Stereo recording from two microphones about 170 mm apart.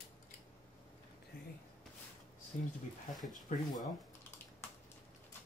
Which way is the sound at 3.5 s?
50° left (ahead or behind).